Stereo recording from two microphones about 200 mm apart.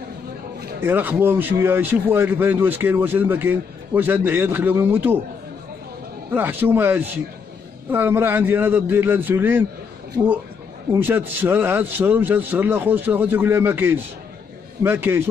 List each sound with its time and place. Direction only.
0.7 s a man's voice: 10° right (ahead or behind)
6.3 s a man's voice: 10° right (ahead or behind)
10.9 s a man's voice: 10° right (ahead or behind)